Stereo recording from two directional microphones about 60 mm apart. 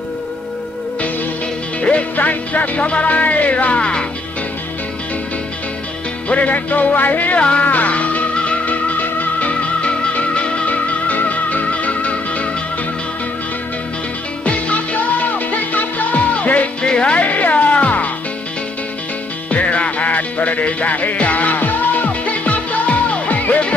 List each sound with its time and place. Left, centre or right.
1.8 s music: left
6.2 s music: left
14.4 s music: left
19.5 s music: left